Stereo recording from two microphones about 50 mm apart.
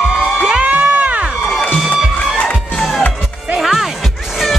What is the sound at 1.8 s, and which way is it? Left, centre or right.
Music, centre.